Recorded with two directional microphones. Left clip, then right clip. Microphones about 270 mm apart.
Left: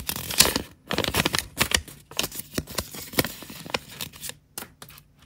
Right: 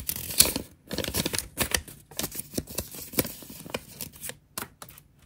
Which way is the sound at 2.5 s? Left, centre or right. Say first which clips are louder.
Left 5 dB; centre.